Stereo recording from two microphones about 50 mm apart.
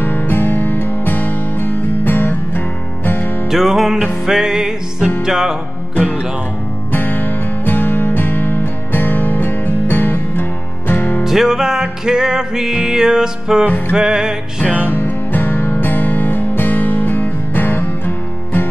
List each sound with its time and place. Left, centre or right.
0.0 s music: left
3.4 s music: centre
5.9 s music: left
6.9 s music: left
11.2 s music: centre
14.9 s music: left